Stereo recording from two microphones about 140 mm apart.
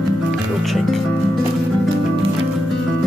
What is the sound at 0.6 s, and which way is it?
Speech, centre (ahead or behind).